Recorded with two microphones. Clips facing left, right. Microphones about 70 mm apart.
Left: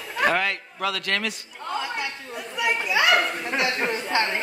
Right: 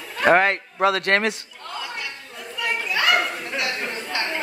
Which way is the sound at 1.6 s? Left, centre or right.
Left.